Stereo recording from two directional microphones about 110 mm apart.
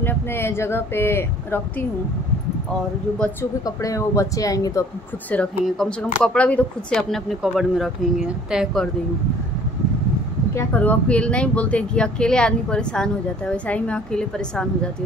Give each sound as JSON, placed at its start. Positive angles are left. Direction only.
{"t": 0.0, "sound": "speech", "side_deg": 20}
{"t": 3.6, "sound": "speech", "side_deg": 30}
{"t": 5.7, "sound": "speech", "side_deg": 5}
{"t": 10.5, "sound": "speech", "side_deg": 25}
{"t": 10.8, "sound": "speech", "side_deg": 10}